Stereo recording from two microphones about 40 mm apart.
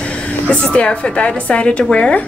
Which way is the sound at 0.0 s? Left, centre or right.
Left.